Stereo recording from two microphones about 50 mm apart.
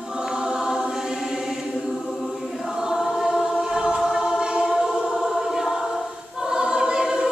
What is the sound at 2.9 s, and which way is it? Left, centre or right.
Choir, centre.